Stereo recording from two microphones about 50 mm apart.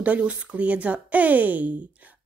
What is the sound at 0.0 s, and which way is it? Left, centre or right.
A woman's voice, right.